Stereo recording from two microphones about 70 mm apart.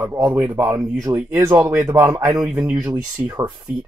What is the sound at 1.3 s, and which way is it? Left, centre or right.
Speech, right.